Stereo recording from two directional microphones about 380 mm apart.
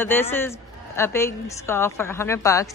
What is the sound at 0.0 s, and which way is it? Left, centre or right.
A woman's voice, centre.